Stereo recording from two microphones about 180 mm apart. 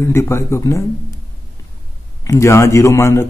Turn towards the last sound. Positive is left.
turn(degrees=15)  # may be behind; listen again after turning